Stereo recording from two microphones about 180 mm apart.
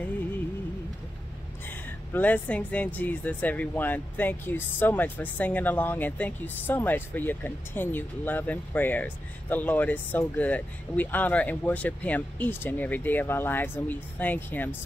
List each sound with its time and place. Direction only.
1.7 s speech: 10° left (ahead or behind)